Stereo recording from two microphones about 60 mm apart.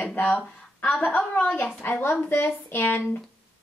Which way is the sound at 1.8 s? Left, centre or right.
Left.